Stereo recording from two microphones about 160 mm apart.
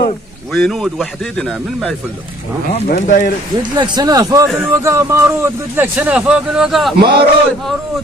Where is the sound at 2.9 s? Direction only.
55° left (ahead or behind).